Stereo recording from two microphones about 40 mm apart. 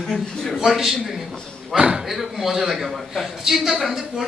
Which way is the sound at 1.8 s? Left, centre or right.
Right.